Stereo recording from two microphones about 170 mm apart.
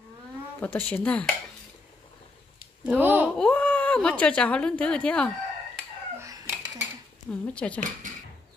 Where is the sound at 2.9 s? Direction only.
10° right (ahead or behind).